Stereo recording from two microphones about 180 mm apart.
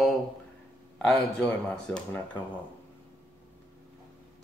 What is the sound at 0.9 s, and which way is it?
Speech, centre (ahead or behind).